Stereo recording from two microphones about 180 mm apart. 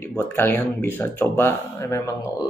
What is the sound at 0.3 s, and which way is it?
Speech, 10° left (ahead or behind).